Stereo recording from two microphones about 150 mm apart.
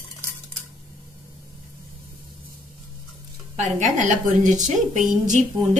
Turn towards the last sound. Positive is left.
turn(degrees=-55)  # may be behind; listen again after turning